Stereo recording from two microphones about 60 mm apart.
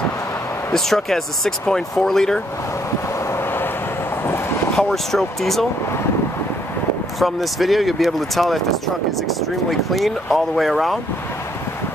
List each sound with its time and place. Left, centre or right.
0.7 s speech: centre
4.3 s vehicle: left
4.7 s speech: centre
7.2 s speech: centre